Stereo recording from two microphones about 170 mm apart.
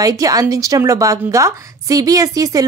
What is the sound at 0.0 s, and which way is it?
A woman's voice, 20° right (ahead or behind).